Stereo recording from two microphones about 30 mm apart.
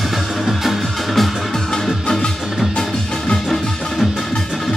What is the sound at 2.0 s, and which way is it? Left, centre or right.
Music, centre.